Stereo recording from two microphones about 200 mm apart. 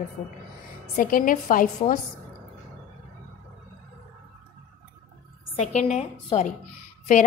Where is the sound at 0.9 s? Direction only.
45° left (ahead or behind).